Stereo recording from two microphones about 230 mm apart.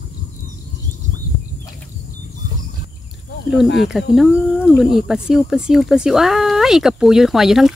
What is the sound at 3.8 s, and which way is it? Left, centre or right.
Speech, centre.